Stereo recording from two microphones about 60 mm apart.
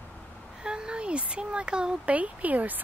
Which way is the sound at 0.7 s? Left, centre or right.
Centre.